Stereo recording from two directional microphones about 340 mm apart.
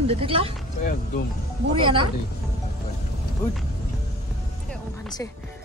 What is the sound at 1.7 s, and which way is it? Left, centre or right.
Speech, centre.